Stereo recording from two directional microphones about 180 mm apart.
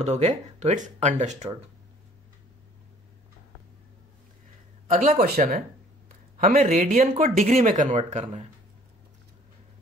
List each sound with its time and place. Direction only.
0.0 s speech: 40° right (ahead or behind)
4.8 s speech: 50° right (ahead or behind)